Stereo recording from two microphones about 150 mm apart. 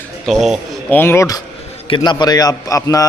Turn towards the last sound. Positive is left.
turn(degrees=25)  # may be behind; listen again after turning